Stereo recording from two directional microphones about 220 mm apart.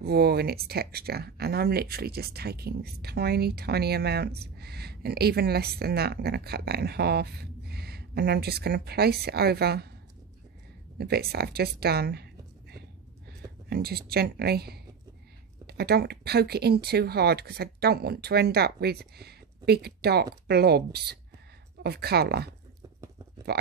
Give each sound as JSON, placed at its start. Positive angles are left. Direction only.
{"t": 0.0, "sound": "speech", "side_deg": -45}
{"t": 11.0, "sound": "speech", "side_deg": -45}
{"t": 23.5, "sound": "speech", "side_deg": -45}